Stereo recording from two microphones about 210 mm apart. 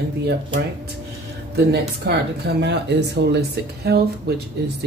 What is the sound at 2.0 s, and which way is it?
Speech, 55° right (ahead or behind).